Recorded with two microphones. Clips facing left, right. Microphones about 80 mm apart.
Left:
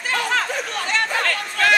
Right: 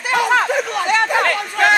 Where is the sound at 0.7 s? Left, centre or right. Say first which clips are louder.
Right 5 dB; centre.